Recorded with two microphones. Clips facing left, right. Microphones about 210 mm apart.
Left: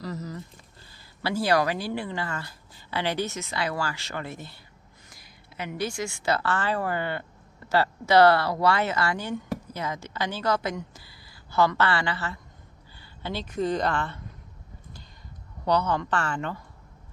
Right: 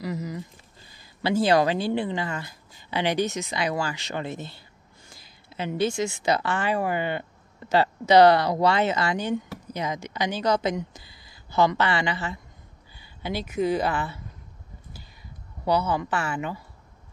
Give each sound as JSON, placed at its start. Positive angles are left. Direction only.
{"t": 0.0, "sound": "a sound", "side_deg": -10}
{"t": 1.2, "sound": "speech", "side_deg": -20}
{"t": 15.6, "sound": "speech", "side_deg": -10}